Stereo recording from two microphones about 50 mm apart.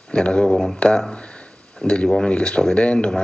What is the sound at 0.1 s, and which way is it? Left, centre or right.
Speech, centre.